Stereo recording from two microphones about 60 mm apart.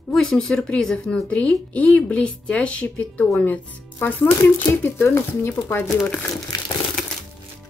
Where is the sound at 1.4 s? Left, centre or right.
Left.